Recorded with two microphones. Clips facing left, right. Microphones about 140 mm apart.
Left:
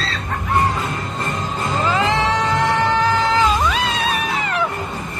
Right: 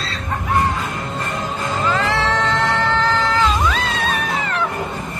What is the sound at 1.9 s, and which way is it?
Cat, 15° left (ahead or behind).